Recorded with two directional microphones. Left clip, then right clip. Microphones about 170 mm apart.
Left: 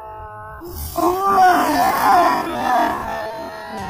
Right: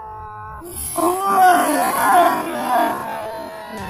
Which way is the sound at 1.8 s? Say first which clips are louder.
Even; 5° right (ahead or behind).